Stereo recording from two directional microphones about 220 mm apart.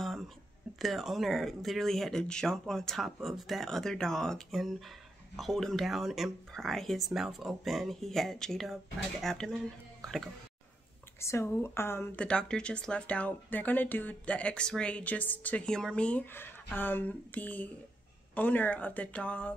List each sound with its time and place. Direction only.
0.7 s speech: centre (ahead or behind)
11.1 s speech: 10° left (ahead or behind)